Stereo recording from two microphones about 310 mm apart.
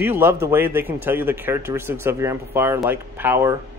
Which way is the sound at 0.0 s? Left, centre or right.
Centre.